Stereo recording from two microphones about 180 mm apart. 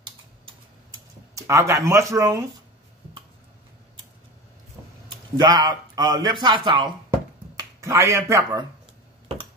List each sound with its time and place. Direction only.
1.3 s speech: 15° right (ahead or behind)
5.4 s speech: 25° right (ahead or behind)